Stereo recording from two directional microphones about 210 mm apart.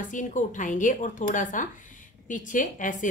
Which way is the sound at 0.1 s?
35° left (ahead or behind).